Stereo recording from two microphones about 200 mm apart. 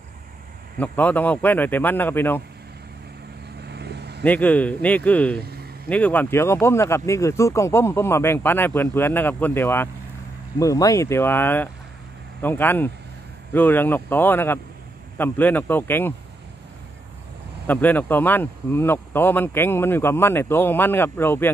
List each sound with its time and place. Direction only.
0.7 s speech: 10° left (ahead or behind)
3.6 s vehicle: 55° right (ahead or behind)
4.2 s speech: 5° left (ahead or behind)
5.4 s vehicle: 50° right (ahead or behind)
5.9 s speech: 5° left (ahead or behind)
17.6 s speech: 10° left (ahead or behind)